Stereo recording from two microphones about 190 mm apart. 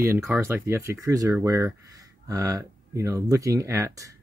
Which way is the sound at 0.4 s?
10° right (ahead or behind).